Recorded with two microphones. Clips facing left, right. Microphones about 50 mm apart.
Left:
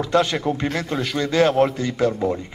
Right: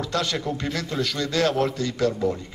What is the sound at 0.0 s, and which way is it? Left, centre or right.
A man's voice, left.